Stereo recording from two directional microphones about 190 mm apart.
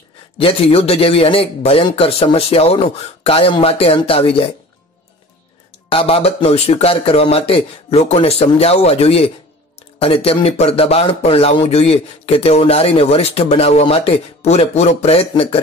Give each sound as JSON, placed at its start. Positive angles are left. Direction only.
{"t": 0.4, "sound": "speech", "side_deg": 30}
{"t": 5.9, "sound": "speech", "side_deg": 30}